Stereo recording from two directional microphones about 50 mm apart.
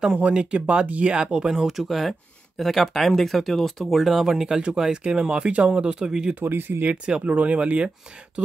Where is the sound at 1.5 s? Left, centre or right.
Centre.